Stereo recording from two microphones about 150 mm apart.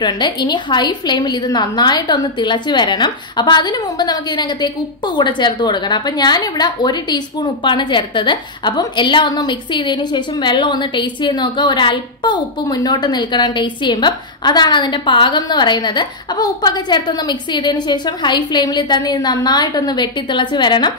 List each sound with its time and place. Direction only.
0.0 s a woman's voice: 30° left (ahead or behind)